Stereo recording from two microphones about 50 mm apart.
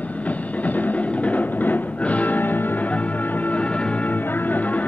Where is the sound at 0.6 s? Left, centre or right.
Left.